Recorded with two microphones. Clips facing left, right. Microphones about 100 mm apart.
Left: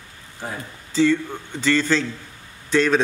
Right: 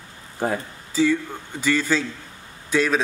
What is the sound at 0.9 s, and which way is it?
A man's voice, 10° right (ahead or behind).